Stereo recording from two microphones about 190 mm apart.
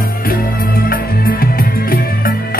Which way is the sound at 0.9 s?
50° left (ahead or behind).